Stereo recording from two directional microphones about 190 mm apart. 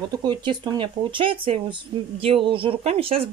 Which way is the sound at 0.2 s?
20° right (ahead or behind).